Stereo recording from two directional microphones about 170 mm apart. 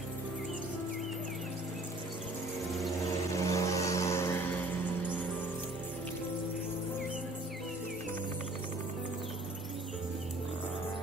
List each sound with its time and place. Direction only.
3.3 s vehicle: 20° left (ahead or behind)